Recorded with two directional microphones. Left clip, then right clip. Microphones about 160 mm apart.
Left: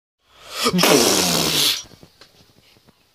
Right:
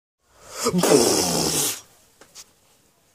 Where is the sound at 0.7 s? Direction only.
Centre (ahead or behind).